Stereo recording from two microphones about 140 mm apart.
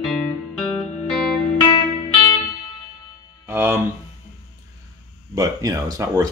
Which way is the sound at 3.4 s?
15° right (ahead or behind).